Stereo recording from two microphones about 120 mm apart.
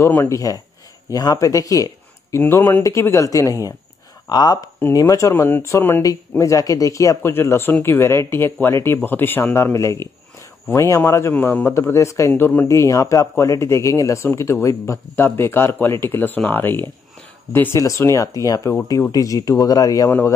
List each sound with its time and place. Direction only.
0.0 s a man's voice: 20° left (ahead or behind)
20.1 s a man's voice: 20° left (ahead or behind)